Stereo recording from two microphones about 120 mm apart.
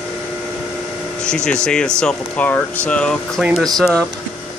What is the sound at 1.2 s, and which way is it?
Speech, 5° left (ahead or behind).